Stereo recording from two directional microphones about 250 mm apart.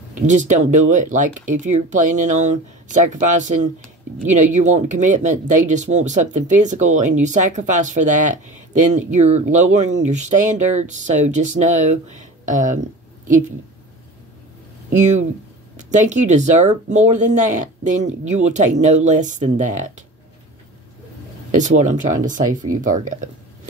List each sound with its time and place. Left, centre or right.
0.3 s speech: right
15.9 s speech: right
21.5 s speech: right